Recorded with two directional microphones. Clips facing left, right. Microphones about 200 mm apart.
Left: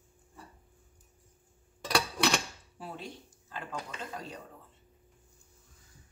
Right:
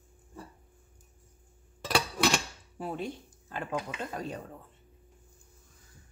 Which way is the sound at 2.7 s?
55° right (ahead or behind).